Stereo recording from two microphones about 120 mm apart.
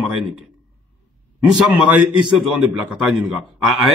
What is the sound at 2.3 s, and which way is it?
A man's voice, 10° right (ahead or behind).